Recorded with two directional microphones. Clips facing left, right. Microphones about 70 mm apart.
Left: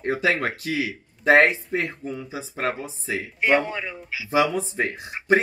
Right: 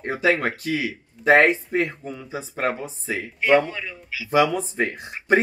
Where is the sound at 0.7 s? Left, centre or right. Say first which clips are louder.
Even; right.